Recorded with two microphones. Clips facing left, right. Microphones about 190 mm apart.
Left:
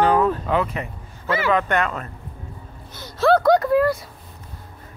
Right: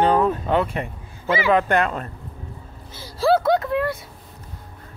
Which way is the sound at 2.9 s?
30° right (ahead or behind).